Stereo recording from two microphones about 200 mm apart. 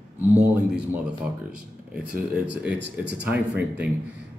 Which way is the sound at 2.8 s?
60° right (ahead or behind).